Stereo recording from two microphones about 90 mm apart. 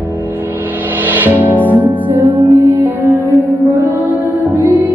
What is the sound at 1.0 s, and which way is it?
Music, 20° right (ahead or behind).